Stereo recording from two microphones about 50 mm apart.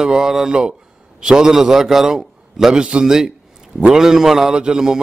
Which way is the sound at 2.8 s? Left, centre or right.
Right.